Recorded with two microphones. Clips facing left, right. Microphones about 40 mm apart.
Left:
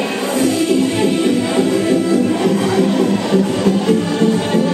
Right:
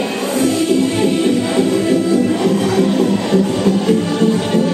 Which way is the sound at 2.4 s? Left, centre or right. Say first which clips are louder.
Even; centre.